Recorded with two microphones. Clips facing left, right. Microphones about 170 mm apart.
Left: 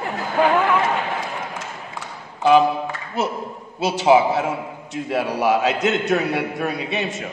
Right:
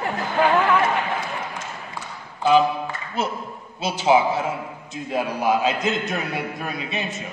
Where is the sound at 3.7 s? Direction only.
70° left (ahead or behind).